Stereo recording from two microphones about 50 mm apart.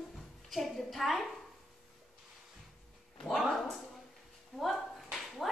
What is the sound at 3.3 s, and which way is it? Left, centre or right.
A woman's voice, centre.